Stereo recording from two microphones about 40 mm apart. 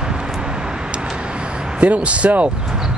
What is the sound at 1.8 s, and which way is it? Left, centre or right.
Speech, right.